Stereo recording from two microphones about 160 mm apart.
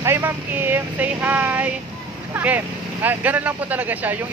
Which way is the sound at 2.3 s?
10° right (ahead or behind).